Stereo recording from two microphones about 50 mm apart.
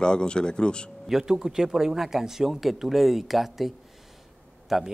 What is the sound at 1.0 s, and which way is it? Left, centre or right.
Speech, centre.